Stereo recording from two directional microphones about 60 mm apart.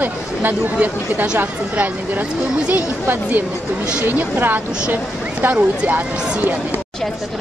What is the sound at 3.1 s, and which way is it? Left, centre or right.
Speech, right.